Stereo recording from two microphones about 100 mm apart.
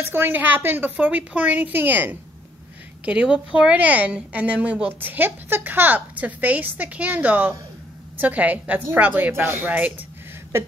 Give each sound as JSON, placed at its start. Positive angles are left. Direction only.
{"t": 0.0, "sound": "a woman's voice", "side_deg": -20}